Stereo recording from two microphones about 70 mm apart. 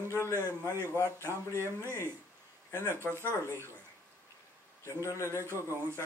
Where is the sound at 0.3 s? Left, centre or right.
Right.